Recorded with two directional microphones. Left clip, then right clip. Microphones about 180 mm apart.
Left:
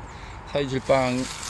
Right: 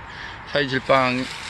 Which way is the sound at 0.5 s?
5° left (ahead or behind).